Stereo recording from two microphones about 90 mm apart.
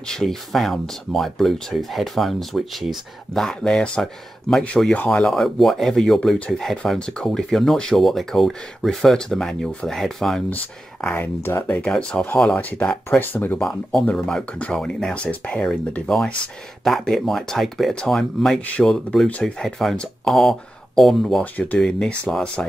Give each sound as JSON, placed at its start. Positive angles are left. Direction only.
{"t": 0.0, "sound": "speech", "side_deg": 5}
{"t": 4.9, "sound": "speech", "side_deg": 15}
{"t": 5.2, "sound": "speech", "side_deg": 5}
{"t": 11.1, "sound": "speech", "side_deg": 20}
{"t": 14.1, "sound": "speech", "side_deg": 5}